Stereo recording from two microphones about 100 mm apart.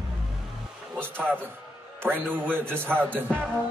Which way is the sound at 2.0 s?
20° right (ahead or behind).